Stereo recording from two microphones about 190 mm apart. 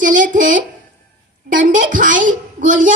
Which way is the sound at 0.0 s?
45° right (ahead or behind).